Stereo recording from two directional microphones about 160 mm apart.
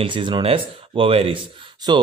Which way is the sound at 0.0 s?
30° right (ahead or behind).